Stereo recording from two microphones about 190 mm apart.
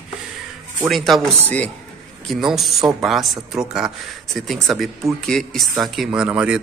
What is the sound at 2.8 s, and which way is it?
Speech, 20° right (ahead or behind).